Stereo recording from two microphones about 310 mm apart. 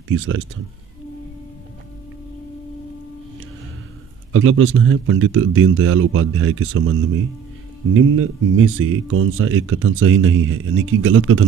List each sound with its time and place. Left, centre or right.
0.1 s speech: right
4.3 s speech: right